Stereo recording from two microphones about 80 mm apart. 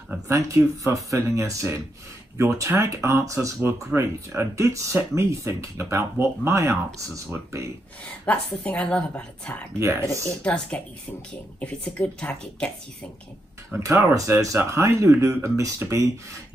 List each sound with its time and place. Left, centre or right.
0.3 s speech: right
8.3 s a woman's voice: centre
9.8 s speech: right
10.4 s a woman's voice: centre
13.7 s speech: right